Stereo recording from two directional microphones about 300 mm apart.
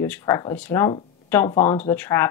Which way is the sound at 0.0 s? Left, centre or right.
Centre.